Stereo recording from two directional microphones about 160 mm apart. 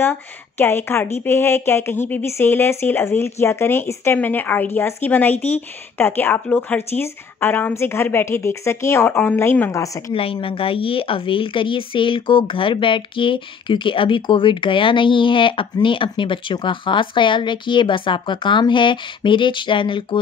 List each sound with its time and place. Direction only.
0.0 s a woman's voice: 15° left (ahead or behind)
10.1 s a woman's voice: 35° left (ahead or behind)